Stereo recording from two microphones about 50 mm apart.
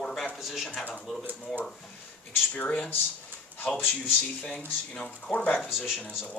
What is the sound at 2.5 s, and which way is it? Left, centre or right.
Speech, left.